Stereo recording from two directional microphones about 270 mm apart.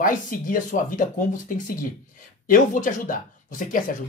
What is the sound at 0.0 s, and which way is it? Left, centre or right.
Speech, left.